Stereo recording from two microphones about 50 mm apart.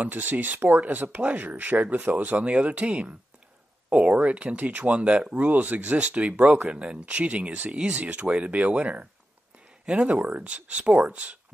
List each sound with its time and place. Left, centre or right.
0.0 s speech: right